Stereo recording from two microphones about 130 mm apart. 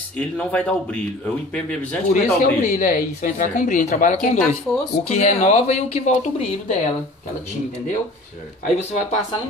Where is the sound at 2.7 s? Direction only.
90° left; by 4.1 s 75° left (ahead or behind).